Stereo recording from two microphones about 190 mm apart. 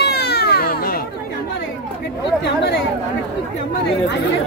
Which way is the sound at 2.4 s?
60° left (ahead or behind).